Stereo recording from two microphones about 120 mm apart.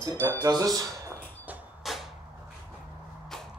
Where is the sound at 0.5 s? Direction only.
30° right (ahead or behind).